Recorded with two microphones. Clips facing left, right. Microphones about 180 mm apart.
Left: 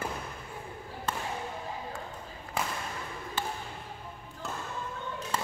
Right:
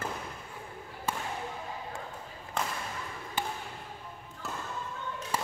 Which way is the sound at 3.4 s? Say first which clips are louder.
Right 1 dB; 15° right (ahead or behind).